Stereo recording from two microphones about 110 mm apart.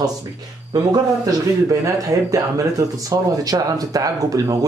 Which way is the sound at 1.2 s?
30° right (ahead or behind).